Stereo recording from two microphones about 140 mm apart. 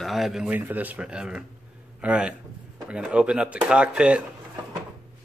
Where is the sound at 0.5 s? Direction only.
10° right (ahead or behind).